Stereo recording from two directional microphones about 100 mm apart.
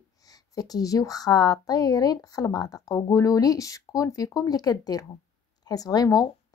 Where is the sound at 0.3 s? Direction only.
40° left (ahead or behind).